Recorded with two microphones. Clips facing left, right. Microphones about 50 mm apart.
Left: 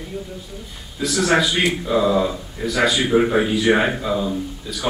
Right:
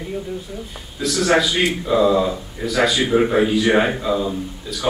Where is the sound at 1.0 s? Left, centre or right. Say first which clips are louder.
Right 1 dB; centre.